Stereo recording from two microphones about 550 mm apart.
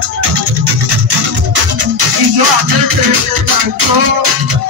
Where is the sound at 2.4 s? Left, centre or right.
Right.